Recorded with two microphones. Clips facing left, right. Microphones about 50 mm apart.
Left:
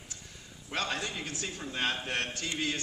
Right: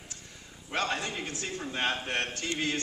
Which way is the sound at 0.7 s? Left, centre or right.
Right.